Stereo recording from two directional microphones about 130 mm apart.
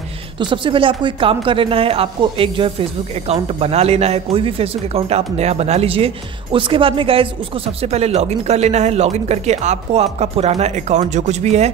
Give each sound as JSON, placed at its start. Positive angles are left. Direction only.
{"t": 0.4, "sound": "speech", "side_deg": -40}